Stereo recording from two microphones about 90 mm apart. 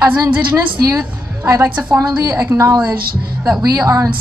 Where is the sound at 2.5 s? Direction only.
35° right (ahead or behind).